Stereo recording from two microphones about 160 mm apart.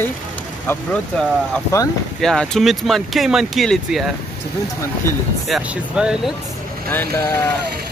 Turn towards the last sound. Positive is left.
turn(degrees=15)  # may be behind; listen again after turning